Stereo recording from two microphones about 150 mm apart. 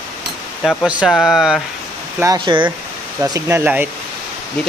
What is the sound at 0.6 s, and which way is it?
Speech, 5° right (ahead or behind).